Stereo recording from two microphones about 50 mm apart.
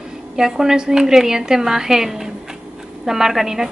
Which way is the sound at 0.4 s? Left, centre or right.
Centre.